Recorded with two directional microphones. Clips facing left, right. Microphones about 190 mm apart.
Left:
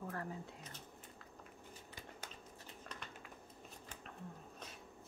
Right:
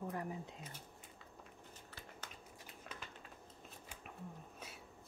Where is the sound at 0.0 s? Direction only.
15° right (ahead or behind).